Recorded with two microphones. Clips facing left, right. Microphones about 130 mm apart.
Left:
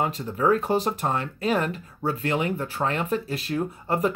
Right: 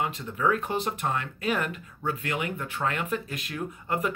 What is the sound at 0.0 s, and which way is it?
Speech, 35° left (ahead or behind).